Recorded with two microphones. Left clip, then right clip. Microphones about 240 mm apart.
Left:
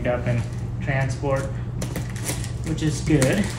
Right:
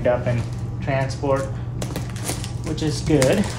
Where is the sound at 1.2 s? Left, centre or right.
Right.